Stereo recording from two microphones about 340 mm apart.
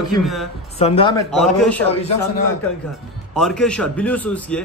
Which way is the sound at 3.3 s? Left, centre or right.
Centre.